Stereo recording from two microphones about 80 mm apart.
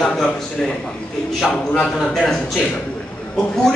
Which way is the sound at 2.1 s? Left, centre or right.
Centre.